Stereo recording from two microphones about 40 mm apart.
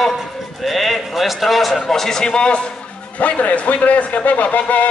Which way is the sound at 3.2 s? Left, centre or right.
Left.